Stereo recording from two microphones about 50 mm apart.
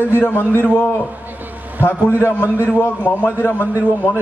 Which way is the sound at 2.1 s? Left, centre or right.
Left.